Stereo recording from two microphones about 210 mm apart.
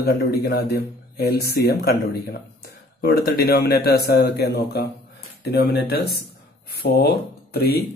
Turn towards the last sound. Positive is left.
turn(degrees=45)  # may be behind; listen again after turning